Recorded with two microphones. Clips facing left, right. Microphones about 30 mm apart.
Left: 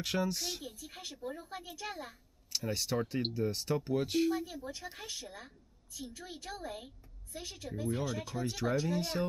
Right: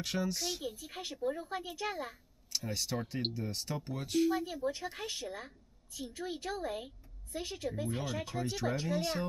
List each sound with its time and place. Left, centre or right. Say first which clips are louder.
0.0 s speech: left 1 dB; centre
0.7 s speech: right 4 dB; centre
2.5 s speech: left 2 dB; centre
4.3 s speech: right 1 dB; centre
4.6 s a woman's voice: right 6 dB; right
7.9 s speech: left 1 dB; centre
8.4 s speech: left 3 dB; centre